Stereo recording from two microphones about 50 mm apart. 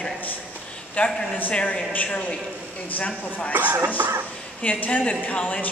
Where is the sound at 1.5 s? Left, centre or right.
Centre.